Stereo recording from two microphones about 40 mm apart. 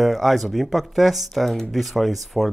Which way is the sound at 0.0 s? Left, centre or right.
Centre.